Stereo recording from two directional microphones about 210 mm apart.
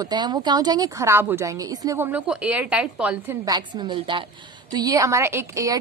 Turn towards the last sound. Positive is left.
turn(degrees=-15)  # may be behind; listen again after turning